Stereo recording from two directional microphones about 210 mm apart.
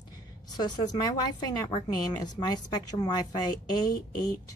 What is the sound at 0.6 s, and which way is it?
A woman's voice, 20° left (ahead or behind).